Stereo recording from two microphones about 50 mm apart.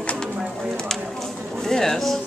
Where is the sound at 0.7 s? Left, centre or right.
Centre.